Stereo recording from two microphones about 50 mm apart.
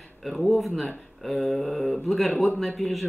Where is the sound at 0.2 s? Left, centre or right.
Centre.